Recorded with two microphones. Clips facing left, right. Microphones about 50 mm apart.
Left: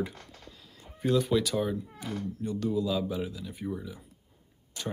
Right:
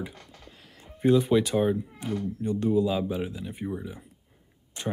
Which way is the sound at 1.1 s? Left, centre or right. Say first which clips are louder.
Right 3 dB; right.